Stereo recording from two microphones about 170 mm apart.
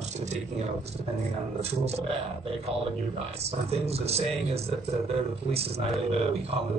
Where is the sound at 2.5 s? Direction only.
35° right (ahead or behind).